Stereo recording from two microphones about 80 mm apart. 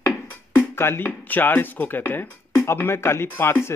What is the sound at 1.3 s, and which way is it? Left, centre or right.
Speech, left.